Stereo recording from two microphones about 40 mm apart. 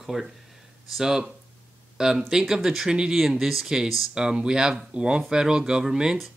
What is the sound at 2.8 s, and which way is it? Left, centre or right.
Speech, centre.